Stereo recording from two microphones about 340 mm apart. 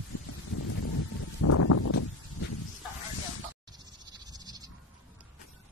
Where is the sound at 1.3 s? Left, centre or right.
Left.